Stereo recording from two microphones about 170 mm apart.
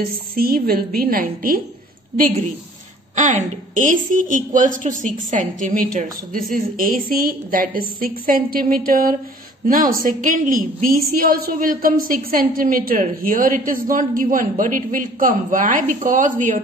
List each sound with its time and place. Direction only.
0.0 s a woman's voice: 60° right (ahead or behind)